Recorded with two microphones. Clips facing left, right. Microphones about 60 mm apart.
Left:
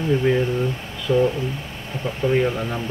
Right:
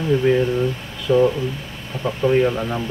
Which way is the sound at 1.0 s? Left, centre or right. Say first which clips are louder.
Right 3 dB; right.